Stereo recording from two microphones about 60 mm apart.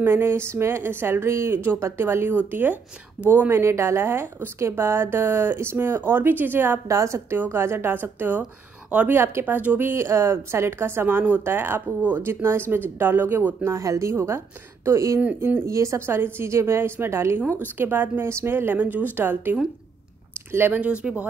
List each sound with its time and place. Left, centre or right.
0.0 s a woman's voice: right
2.3 s speech: right
3.3 s a woman's voice: right
6.9 s speech: right
7.5 s speech: right
9.1 s a woman's voice: right
10.0 s a woman's voice: right
13.6 s a woman's voice: right
15.3 s speech: right
15.6 s speech: right
16.2 s a woman's voice: right
17.7 s speech: right
20.8 s speech: centre